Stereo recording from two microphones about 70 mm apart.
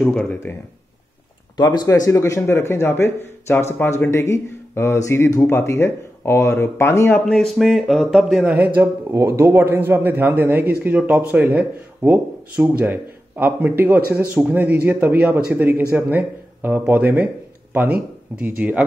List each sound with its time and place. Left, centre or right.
0.0 s speech: centre
1.6 s speech: left
1.9 s speech: left
7.2 s speech: centre
8.5 s a man's voice: right
9.1 s a man's voice: right